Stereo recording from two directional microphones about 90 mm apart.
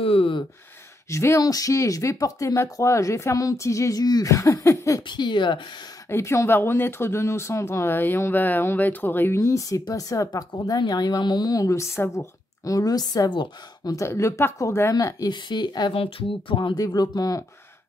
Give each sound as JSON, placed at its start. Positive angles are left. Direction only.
{"t": 0.0, "sound": "speech", "side_deg": 85}
{"t": 1.1, "sound": "speech", "side_deg": 35}
{"t": 5.0, "sound": "a woman's voice", "side_deg": 55}
{"t": 6.0, "sound": "a woman's voice", "side_deg": 30}
{"t": 13.3, "sound": "a woman's voice", "side_deg": 60}
{"t": 13.9, "sound": "speech", "side_deg": 35}
{"t": 15.3, "sound": "a woman's voice", "side_deg": 60}
{"t": 15.9, "sound": "speech", "side_deg": 90}
{"t": 16.7, "sound": "a woman's voice", "side_deg": 45}